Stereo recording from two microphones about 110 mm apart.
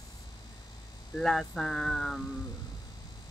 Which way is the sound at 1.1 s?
5° left (ahead or behind).